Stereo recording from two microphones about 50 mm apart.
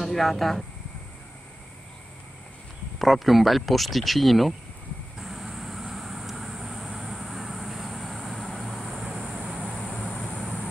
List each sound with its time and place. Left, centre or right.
0.0 s speech: centre
3.0 s speech: centre
5.2 s vehicle: centre
8.9 s vehicle: right
9.6 s a sound: left